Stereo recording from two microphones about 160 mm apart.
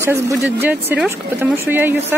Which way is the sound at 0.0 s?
15° right (ahead or behind).